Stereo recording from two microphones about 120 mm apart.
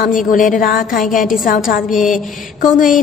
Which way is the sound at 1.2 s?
90° left.